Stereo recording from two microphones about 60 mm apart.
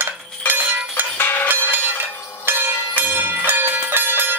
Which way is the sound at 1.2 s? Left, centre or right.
Left.